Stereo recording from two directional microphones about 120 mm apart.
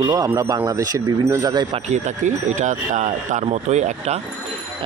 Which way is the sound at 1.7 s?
75° right (ahead or behind).